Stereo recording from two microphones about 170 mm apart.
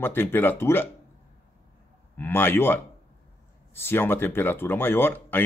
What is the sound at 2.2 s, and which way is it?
Speech, 15° left (ahead or behind).